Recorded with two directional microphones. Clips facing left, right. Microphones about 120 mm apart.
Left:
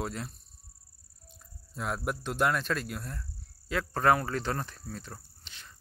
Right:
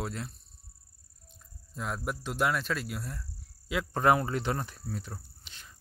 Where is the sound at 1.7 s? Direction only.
Centre (ahead or behind).